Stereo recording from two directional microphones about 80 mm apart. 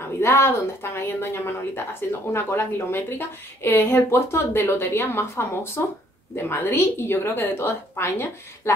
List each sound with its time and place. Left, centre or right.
0.2 s a woman's voice: left